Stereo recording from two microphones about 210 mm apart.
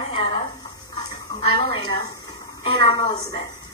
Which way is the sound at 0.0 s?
25° left (ahead or behind).